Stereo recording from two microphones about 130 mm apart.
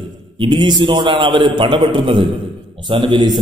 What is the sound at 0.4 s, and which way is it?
A man's voice, 40° right (ahead or behind).